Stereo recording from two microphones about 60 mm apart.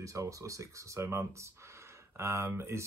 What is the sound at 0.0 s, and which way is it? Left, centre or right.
Speech, right.